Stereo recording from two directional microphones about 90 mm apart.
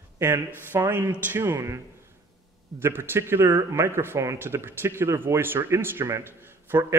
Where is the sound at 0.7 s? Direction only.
25° right (ahead or behind).